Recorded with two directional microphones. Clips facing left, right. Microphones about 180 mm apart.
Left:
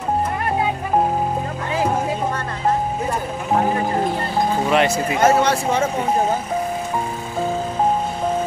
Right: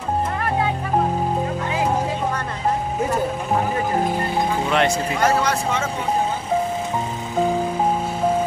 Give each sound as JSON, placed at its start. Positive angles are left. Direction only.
{"t": 4.6, "sound": "music", "side_deg": 5}
{"t": 5.2, "sound": "speech", "side_deg": 25}